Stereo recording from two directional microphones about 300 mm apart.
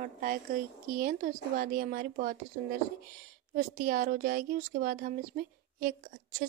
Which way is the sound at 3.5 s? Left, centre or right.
Right.